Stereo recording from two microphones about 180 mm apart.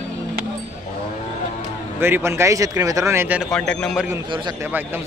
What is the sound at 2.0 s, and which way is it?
Speech, 15° right (ahead or behind).